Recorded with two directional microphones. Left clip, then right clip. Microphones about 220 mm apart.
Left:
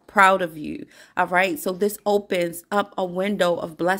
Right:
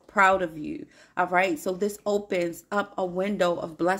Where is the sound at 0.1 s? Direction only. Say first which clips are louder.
Left 4 dB; 35° left (ahead or behind).